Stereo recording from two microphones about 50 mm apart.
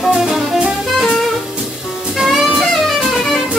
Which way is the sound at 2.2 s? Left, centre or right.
Centre.